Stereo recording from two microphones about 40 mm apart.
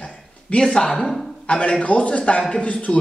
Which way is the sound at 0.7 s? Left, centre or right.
Centre.